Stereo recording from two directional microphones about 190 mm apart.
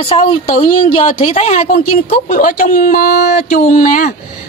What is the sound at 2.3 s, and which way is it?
A woman's voice, 45° left (ahead or behind).